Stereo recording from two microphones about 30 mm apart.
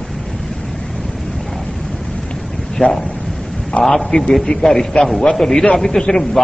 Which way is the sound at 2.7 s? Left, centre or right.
Centre.